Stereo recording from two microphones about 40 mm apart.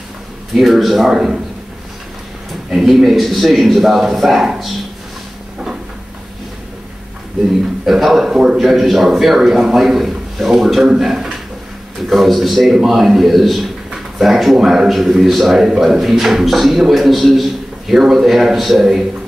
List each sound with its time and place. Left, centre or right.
0.6 s a man's voice: centre
1.1 s a man's voice: centre
2.7 s a man's voice: centre
7.8 s a man's voice: centre
11.0 s a sound: centre
12.1 s a man's voice: centre